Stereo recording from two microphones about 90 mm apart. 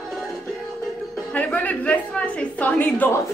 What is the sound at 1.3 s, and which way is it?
A woman's voice, 15° left (ahead or behind).